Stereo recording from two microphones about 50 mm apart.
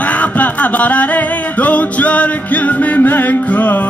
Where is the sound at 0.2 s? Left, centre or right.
Left.